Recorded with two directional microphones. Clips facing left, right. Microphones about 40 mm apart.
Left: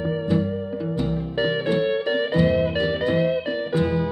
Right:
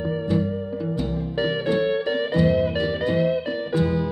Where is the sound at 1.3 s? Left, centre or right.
Left.